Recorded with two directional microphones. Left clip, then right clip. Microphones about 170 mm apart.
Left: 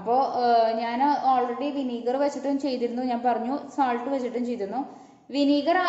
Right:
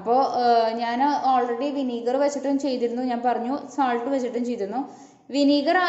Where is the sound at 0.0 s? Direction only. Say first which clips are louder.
Right 2 dB; 20° right (ahead or behind).